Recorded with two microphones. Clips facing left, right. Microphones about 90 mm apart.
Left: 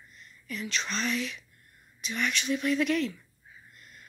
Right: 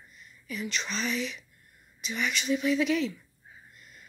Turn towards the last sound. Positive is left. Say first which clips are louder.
# even
turn(degrees=0)  # may be behind; listen again after turning